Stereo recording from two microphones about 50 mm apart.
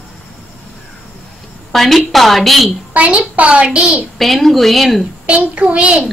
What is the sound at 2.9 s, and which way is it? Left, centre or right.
A child's voice, right.